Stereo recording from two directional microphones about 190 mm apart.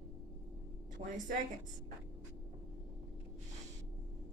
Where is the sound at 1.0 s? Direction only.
45° right (ahead or behind).